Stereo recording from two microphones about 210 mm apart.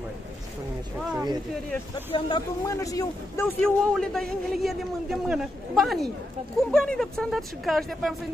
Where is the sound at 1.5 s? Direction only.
5° left (ahead or behind).